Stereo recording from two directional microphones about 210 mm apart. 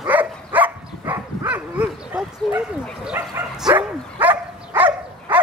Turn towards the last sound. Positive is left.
turn(degrees=-10)  # may be behind; listen again after turning